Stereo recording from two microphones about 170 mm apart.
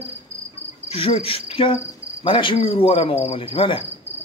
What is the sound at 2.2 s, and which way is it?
Cricket, 30° left (ahead or behind).